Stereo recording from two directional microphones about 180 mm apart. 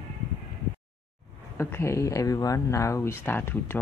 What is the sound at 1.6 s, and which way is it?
Speech, 15° left (ahead or behind).